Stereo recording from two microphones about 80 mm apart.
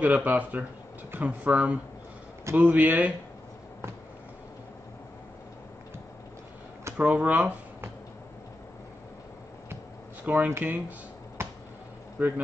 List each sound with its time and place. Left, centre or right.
0.0 s speech: right
7.0 s speech: centre
10.2 s speech: right
11.4 s a sound: right
12.2 s speech: centre